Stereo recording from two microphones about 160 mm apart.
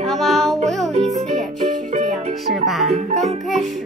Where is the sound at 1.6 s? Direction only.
50° right (ahead or behind).